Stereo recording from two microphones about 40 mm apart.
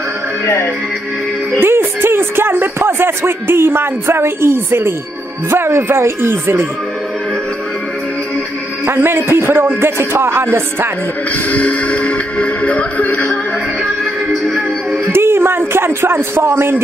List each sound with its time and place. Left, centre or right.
1.6 s speech: right
8.8 s a man's voice: right
11.5 s music: left
15.1 s a sound: right